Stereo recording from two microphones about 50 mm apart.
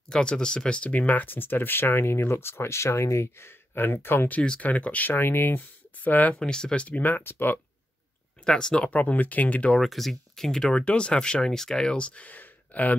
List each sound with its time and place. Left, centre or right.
0.1 s speech: centre; by 4.3 s left
4.6 s speech: left
5.1 s speech: left
6.0 s speech: left
6.4 s speech: centre
7.0 s speech: left
8.5 s speech: centre
8.9 s speech: left
9.8 s speech: centre
12.3 s a sound: left